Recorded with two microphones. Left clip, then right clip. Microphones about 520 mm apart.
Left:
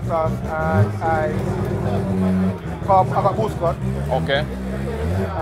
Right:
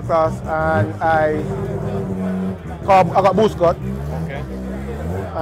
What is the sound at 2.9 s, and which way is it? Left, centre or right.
Speech, right.